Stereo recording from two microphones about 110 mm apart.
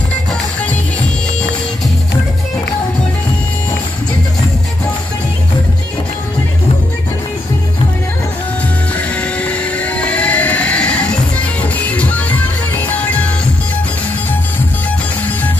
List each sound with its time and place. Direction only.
0.1 s music: 10° left (ahead or behind)
8.9 s music: 10° left (ahead or behind)